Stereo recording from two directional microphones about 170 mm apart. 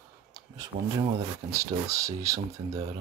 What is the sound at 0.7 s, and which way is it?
Speech, 50° right (ahead or behind).